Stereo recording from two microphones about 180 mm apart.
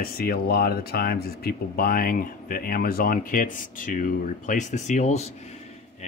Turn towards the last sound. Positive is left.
turn(degrees=40)  # may be behind; listen again after turning